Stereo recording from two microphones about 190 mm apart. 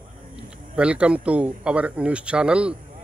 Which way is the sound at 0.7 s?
5° right (ahead or behind).